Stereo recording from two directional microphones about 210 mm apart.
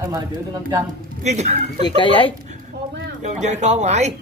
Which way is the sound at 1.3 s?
35° right (ahead or behind).